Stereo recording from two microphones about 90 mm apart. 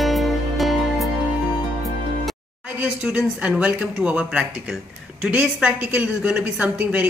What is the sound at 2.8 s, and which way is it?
A woman's voice, 15° right (ahead or behind).